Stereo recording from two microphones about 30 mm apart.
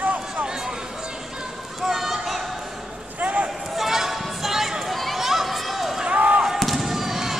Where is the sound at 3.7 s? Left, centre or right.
Centre.